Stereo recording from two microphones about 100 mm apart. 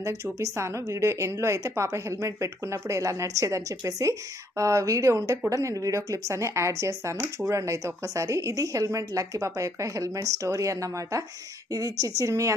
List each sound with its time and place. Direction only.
0.0 s a woman's voice: 30° right (ahead or behind)